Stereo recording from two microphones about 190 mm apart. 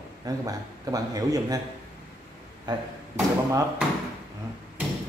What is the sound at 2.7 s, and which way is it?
Speech, 25° right (ahead or behind).